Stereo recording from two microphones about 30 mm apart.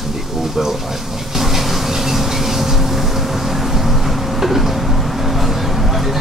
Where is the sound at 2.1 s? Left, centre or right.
Centre.